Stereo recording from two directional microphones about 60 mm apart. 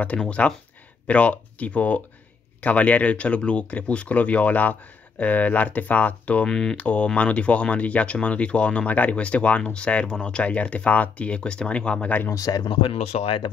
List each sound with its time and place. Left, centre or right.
0.0 s speech: left
6.5 s speech: centre
6.8 s speech: left
12.4 s speech: left